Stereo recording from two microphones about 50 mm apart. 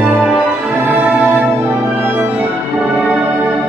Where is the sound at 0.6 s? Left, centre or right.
Right.